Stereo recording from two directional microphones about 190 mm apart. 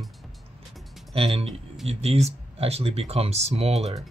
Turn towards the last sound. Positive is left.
turn(degrees=-35)  # may be behind; listen again after turning